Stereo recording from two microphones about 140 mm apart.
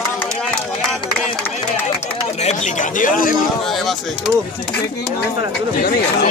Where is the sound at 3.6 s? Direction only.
Centre (ahead or behind).